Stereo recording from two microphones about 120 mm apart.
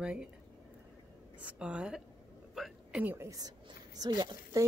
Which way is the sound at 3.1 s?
25° right (ahead or behind).